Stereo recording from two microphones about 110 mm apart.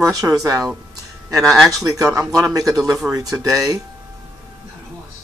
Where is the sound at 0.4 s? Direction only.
30° right (ahead or behind).